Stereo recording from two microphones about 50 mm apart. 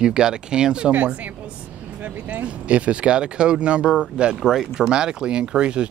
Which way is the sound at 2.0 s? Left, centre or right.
Right.